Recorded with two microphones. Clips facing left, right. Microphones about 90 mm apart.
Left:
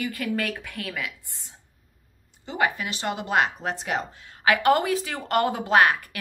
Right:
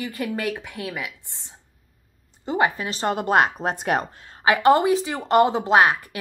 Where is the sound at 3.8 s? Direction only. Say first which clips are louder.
Right 6 dB; 55° right (ahead or behind).